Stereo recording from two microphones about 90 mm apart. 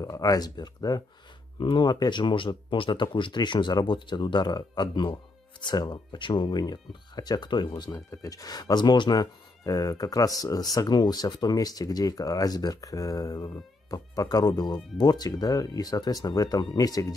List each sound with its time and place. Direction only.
0.0 s speech: 45° left (ahead or behind)
1.6 s speech: 60° left (ahead or behind); by 17.1 s 40° left (ahead or behind)